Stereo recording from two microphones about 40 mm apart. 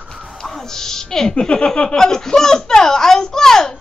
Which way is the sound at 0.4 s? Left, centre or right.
Centre.